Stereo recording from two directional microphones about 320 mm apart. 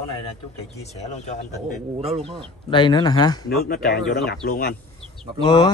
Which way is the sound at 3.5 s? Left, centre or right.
Left.